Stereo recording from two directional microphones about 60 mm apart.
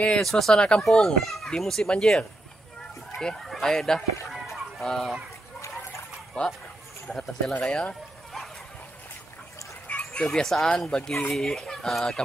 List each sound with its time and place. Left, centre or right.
0.2 s a child's voice: centre
0.6 s speech: centre
0.8 s a child's voice: centre
4.3 s fowl: centre
6.4 s a child's voice: centre
7.6 s speech: centre
9.8 s a sound: left
10.3 s speech: centre